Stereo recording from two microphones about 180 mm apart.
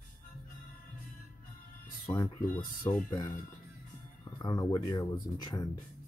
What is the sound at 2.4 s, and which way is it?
Speech, 50° left (ahead or behind).